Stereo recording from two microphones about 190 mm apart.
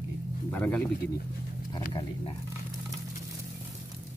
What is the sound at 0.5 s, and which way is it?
Speech, 10° left (ahead or behind).